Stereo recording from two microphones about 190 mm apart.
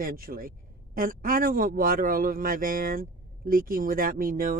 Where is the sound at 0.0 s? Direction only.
50° right (ahead or behind).